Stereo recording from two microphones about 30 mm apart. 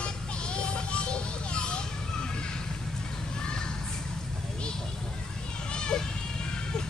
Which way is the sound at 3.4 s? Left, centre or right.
Left.